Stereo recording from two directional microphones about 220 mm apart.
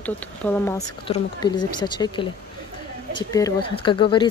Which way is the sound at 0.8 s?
30° left (ahead or behind).